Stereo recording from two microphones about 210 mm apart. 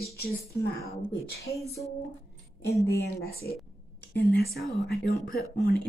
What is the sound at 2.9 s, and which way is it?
Speech, 50° left (ahead or behind).